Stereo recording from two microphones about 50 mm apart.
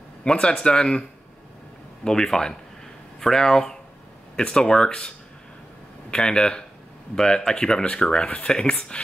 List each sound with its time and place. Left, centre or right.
0.2 s speech: centre
2.0 s speech: centre